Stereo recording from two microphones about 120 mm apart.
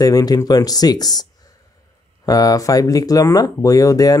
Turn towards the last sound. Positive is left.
turn(degrees=30)  # may be behind; listen again after turning